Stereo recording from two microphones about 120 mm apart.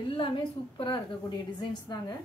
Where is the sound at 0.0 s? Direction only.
45° left (ahead or behind).